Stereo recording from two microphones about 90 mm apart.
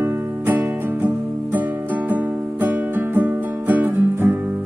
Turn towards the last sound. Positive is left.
turn(degrees=-20)  # may be behind; listen again after turning